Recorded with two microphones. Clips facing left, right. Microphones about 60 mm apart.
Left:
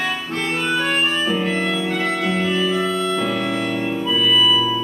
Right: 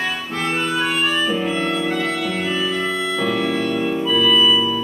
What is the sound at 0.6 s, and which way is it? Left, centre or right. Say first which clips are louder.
Organ: left 1 dB; centre.